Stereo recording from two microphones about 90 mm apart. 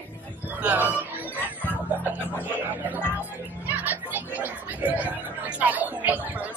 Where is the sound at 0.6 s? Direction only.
15° right (ahead or behind).